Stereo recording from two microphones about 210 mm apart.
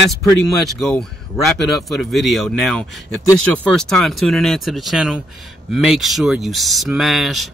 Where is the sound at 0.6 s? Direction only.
Centre (ahead or behind).